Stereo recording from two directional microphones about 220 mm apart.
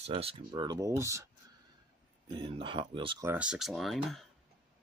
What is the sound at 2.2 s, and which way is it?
Speech, 20° right (ahead or behind).